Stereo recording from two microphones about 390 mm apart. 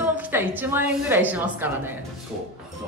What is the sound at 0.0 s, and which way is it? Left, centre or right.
A woman's voice, centre.